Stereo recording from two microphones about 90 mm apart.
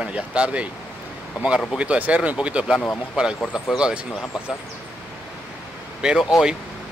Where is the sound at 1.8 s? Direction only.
15° right (ahead or behind).